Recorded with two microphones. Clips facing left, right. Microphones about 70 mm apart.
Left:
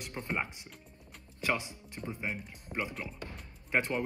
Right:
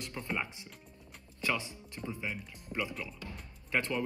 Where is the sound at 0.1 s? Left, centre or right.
Left.